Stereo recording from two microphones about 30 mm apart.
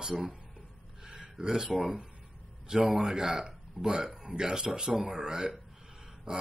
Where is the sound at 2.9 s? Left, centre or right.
Right.